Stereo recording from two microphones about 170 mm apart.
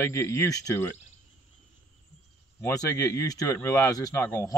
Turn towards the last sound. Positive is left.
turn(degrees=15)  # may be behind; listen again after turning